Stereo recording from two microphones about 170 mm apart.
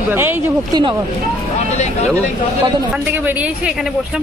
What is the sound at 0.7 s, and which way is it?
Speech, 25° right (ahead or behind).